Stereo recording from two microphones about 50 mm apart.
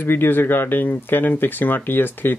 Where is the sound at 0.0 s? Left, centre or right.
Left.